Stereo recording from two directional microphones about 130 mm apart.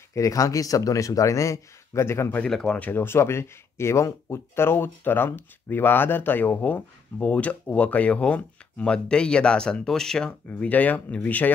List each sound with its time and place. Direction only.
0.1 s speech: 25° left (ahead or behind)
2.4 s speech: 5° left (ahead or behind)